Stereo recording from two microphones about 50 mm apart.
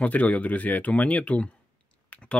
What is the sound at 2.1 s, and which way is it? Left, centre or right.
Clicking, left.